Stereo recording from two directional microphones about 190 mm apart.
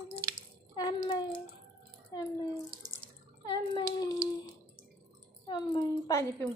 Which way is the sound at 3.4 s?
20° left (ahead or behind).